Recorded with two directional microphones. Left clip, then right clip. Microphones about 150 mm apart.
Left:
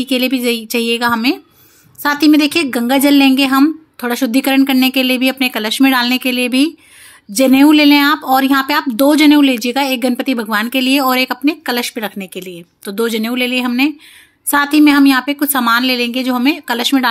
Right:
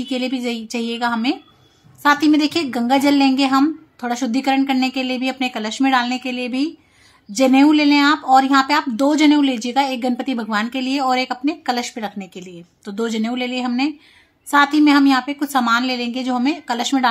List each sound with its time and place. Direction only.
0.0 s speech: 30° left (ahead or behind)
7.3 s speech: 25° left (ahead or behind)